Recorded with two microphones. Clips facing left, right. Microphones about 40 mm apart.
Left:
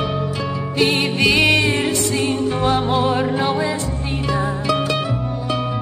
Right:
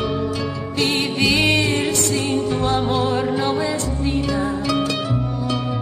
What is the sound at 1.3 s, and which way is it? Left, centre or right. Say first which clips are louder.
Music: left 2 dB; centre.